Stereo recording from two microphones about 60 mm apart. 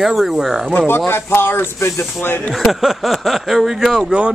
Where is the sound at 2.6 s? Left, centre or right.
Centre.